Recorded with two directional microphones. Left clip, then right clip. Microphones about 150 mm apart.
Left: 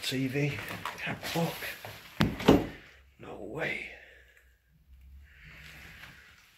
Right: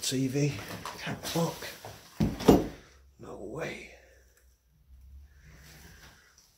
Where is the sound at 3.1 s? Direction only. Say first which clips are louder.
Left 1 dB; 5° right (ahead or behind).